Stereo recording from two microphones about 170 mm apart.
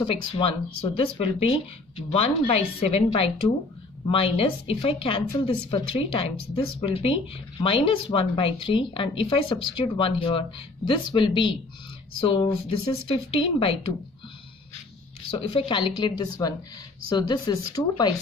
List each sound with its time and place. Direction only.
0.0 s a woman's voice: 30° left (ahead or behind)
15.3 s a woman's voice: 30° left (ahead or behind)